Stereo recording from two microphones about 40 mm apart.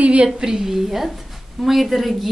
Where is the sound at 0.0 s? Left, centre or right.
Right.